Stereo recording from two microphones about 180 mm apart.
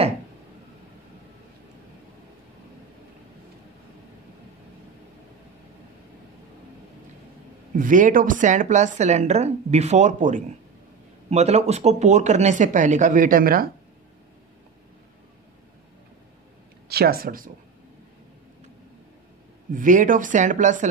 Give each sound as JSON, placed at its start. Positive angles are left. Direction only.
{"t": 7.7, "sound": "a woman's voice", "side_deg": -50}
{"t": 16.9, "sound": "speech", "side_deg": -60}
{"t": 19.7, "sound": "a woman's voice", "side_deg": -45}